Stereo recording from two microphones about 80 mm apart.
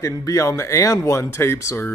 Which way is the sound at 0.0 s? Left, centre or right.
Left.